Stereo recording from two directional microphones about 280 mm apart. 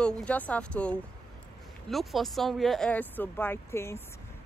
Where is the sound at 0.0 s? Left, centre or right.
Centre.